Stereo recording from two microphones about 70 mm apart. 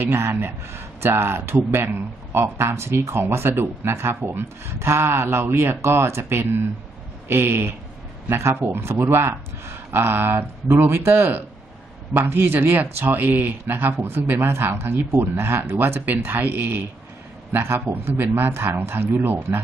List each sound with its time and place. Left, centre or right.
0.0 s speech: right